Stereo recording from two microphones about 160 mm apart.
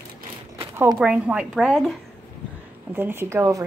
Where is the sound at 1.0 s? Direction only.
5° right (ahead or behind).